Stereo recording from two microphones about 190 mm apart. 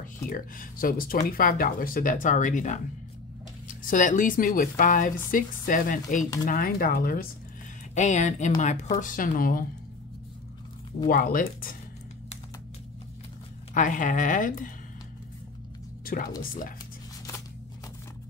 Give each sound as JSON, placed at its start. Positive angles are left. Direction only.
{"t": 0.0, "sound": "speech", "side_deg": 45}
{"t": 7.9, "sound": "speech", "side_deg": 40}
{"t": 11.1, "sound": "speech", "side_deg": 45}
{"t": 13.7, "sound": "speech", "side_deg": 40}
{"t": 16.3, "sound": "speech", "side_deg": 45}